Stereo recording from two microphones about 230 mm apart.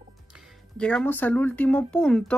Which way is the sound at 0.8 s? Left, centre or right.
Centre.